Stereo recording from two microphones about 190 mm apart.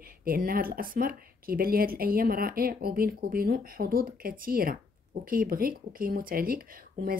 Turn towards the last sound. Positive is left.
turn(degrees=-50)  # may be behind; listen again after turning